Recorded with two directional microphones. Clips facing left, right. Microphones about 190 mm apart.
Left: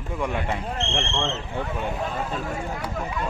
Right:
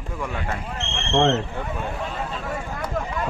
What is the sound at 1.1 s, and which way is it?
Speech, 65° right (ahead or behind).